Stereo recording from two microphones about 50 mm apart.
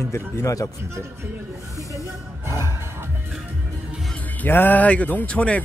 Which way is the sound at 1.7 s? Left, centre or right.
Right.